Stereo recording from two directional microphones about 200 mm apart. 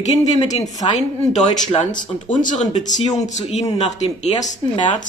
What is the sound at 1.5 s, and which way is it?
Speech, 25° left (ahead or behind).